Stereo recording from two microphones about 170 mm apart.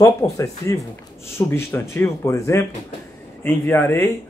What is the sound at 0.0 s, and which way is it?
Speech, 20° left (ahead or behind).